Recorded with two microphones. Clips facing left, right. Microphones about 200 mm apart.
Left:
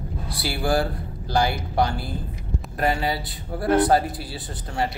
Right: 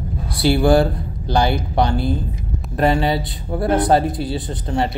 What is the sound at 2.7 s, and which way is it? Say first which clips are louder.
Speech: right 7 dB; 25° right (ahead or behind).